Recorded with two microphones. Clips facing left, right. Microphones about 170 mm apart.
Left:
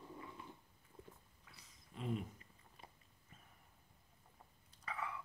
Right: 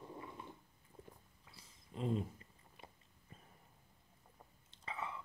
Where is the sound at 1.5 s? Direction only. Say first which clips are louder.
Right 4 dB; 30° right (ahead or behind).